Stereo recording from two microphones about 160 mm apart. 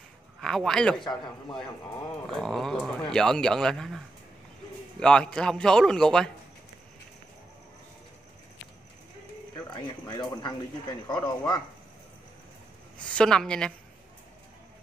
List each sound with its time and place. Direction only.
0.4 s speech: 5° left (ahead or behind)
2.3 s speech: 5° left (ahead or behind)
5.0 s speech: 5° left (ahead or behind)
10.0 s a man's voice: 30° left (ahead or behind)
13.0 s speech: 5° left (ahead or behind)